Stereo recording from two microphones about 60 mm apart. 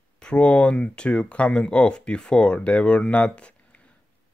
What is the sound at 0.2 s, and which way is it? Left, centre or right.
Speech, centre.